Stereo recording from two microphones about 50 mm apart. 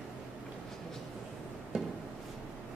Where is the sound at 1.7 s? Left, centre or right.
Centre.